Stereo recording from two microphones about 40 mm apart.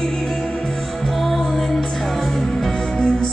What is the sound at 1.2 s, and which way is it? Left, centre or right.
Music, centre.